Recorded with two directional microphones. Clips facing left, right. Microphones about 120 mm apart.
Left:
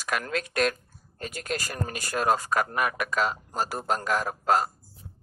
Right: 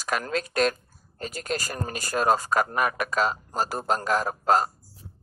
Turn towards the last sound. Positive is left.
turn(degrees=-35)  # may be behind; listen again after turning